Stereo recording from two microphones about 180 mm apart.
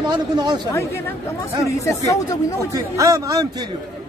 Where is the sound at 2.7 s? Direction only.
20° right (ahead or behind).